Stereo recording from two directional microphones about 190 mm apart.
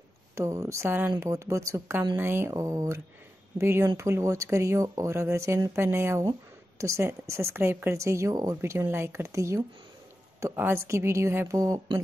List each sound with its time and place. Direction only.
0.4 s speech: 15° right (ahead or behind)